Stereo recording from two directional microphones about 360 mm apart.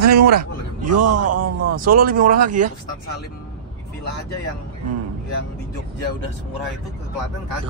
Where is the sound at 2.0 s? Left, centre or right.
Right.